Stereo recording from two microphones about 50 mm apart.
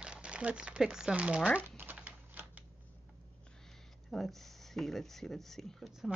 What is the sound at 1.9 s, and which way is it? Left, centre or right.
Typing, right.